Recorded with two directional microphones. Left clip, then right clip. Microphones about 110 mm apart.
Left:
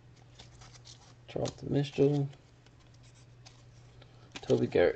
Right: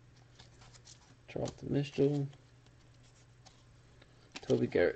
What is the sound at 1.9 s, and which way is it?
Speech, 10° right (ahead or behind).